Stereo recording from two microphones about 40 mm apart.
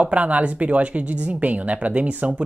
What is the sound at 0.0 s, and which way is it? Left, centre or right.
Speech, right.